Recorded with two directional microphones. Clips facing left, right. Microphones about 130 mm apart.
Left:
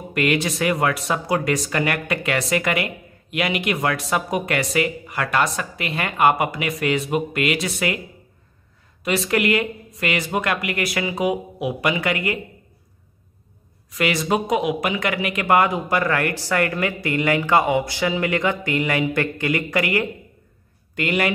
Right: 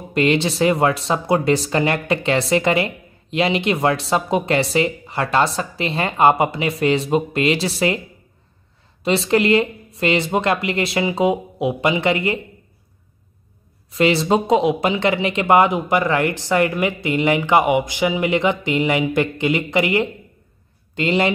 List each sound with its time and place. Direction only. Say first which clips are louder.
0.1 s speech: right 4 dB; 25° right (ahead or behind)
9.0 s speech: right 4 dB; 30° right (ahead or behind)
13.8 s speech: right 5 dB; 30° right (ahead or behind)